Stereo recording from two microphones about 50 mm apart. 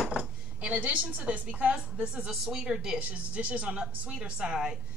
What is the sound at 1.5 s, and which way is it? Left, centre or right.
Speech, right.